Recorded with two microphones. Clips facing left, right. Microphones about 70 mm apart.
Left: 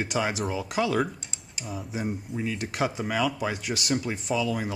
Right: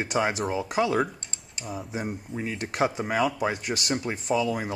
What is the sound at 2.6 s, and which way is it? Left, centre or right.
Speech, right.